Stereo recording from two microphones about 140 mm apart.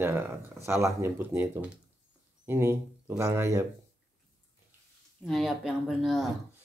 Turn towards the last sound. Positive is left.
turn(degrees=0)  # may be behind; listen again after turning